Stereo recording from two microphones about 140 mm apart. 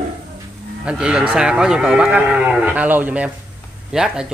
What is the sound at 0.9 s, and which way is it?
Speech, 5° right (ahead or behind).